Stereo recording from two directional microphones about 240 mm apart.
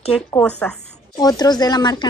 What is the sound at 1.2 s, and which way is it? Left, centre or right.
Speech, centre.